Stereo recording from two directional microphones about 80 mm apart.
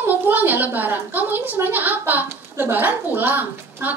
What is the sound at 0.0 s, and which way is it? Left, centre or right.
A woman's voice, right.